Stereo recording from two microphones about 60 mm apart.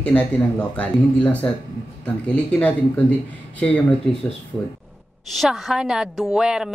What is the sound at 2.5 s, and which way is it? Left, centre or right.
Speech, left.